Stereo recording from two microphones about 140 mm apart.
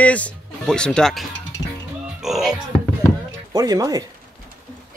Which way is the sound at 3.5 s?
25° right (ahead or behind).